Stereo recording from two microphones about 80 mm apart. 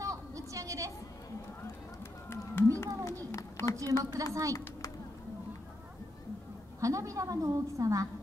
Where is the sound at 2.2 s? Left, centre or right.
Left.